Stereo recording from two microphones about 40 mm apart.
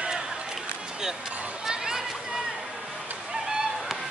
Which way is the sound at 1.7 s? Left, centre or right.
Centre.